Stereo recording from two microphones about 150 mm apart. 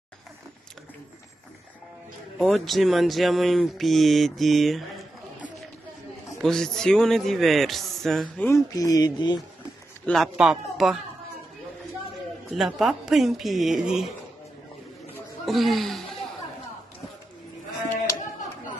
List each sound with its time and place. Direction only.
2.3 s speech: centre (ahead or behind)
8.5 s speech: 20° left (ahead or behind)
10.0 s speech: centre (ahead or behind)
12.4 s speech: centre (ahead or behind)
15.4 s speech: centre (ahead or behind)